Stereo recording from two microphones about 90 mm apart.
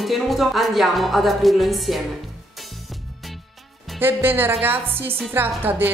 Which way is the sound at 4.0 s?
25° right (ahead or behind).